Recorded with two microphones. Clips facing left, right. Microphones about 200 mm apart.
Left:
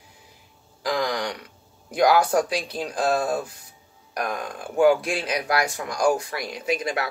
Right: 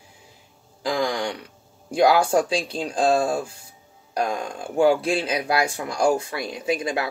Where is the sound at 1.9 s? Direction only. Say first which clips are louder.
Right 1 dB; 30° right (ahead or behind).